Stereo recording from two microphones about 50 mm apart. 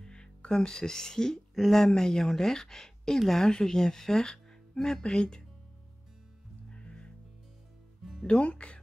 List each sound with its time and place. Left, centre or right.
0.0 s speech: centre
6.7 s music: left
8.0 s music: centre
8.3 s speech: left